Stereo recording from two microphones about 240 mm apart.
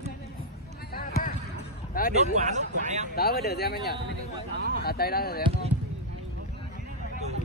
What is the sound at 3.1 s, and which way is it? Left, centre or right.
Speech, left.